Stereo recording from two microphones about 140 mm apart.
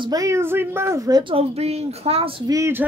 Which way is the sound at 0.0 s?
25° right (ahead or behind).